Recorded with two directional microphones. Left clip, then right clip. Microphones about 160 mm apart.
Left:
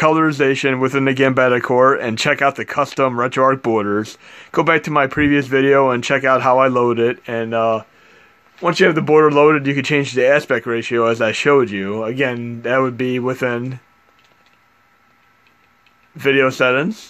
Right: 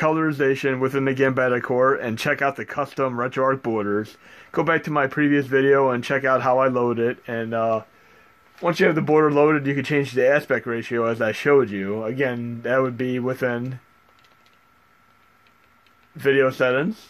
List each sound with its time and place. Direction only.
0.0 s speech: 35° left (ahead or behind)
16.2 s speech: 25° left (ahead or behind)